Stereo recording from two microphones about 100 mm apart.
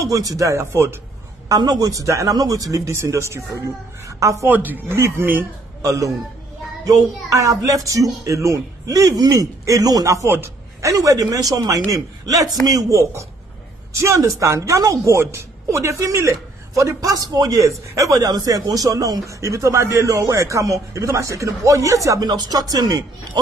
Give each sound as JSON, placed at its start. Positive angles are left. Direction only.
{"t": 0.0, "sound": "a woman's voice", "side_deg": -35}
{"t": 1.5, "sound": "a woman's voice", "side_deg": -40}
{"t": 4.5, "sound": "a man's voice", "side_deg": -20}